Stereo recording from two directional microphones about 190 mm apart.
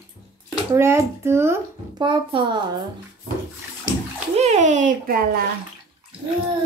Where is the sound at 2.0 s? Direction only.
25° right (ahead or behind).